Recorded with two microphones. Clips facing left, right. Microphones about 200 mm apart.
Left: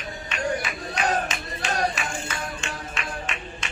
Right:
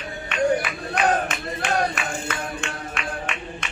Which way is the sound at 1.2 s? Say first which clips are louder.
Right 3 dB; 55° right (ahead or behind).